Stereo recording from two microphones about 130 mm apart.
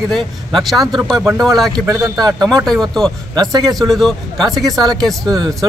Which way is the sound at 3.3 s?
30° right (ahead or behind).